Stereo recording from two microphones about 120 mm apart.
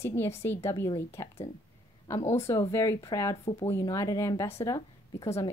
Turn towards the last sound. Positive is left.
turn(degrees=25)  # may be behind; listen again after turning